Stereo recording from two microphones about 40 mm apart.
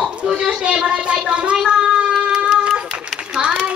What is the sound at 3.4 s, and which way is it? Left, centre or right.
Speech, right.